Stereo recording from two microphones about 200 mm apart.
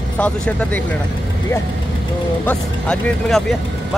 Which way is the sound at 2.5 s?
5° left (ahead or behind).